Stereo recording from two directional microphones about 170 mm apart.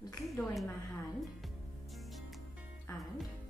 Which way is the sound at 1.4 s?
Centre (ahead or behind).